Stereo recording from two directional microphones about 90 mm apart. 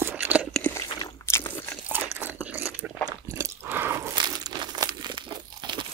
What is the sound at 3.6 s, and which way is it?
Biting, 25° right (ahead or behind).